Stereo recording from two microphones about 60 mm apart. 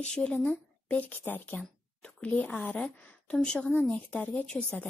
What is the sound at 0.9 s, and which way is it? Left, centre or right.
A woman's voice, left.